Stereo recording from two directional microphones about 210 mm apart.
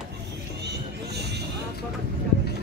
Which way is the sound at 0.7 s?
50° right (ahead or behind).